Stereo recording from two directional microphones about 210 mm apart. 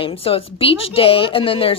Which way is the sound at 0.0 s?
25° left (ahead or behind).